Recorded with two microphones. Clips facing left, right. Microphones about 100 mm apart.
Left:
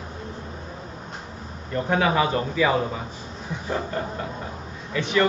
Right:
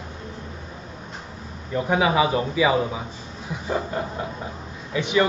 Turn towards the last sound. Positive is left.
turn(degrees=-15)  # may be behind; listen again after turning